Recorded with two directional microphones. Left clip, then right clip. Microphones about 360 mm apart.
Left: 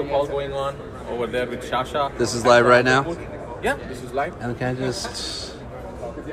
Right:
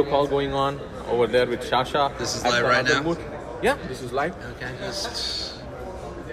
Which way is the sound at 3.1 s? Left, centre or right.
Right.